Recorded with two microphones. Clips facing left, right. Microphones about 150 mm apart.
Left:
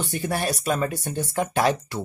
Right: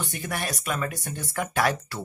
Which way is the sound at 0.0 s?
30° left (ahead or behind).